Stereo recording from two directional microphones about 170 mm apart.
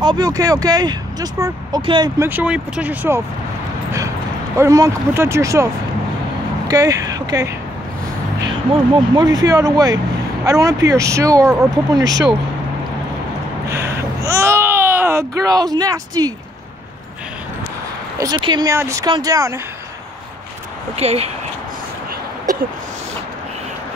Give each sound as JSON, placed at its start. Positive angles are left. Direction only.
{"t": 0.0, "sound": "speech", "side_deg": -25}
{"t": 2.1, "sound": "speech", "side_deg": -10}
{"t": 4.6, "sound": "speech", "side_deg": -20}
{"t": 6.7, "sound": "speech", "side_deg": -20}
{"t": 9.1, "sound": "speech", "side_deg": -25}
{"t": 13.7, "sound": "babbling", "side_deg": -15}
{"t": 18.1, "sound": "speech", "side_deg": -20}
{"t": 21.0, "sound": "speech", "side_deg": -35}